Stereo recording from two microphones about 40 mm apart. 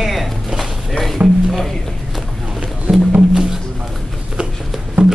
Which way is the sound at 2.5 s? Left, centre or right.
Centre.